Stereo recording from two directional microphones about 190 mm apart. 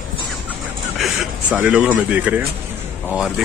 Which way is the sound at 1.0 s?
5° right (ahead or behind).